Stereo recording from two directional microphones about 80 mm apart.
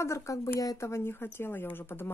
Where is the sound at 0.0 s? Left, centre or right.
Left.